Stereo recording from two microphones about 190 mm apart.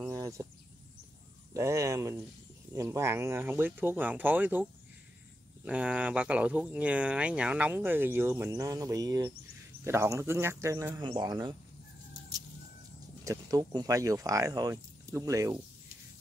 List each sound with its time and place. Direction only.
0.0 s a sound: 15° right (ahead or behind)
1.5 s speech: 15° right (ahead or behind)
5.7 s speech: 5° right (ahead or behind)
13.2 s speech: 15° right (ahead or behind)